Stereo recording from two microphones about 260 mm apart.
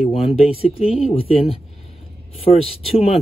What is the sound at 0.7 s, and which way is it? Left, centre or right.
Speech, left.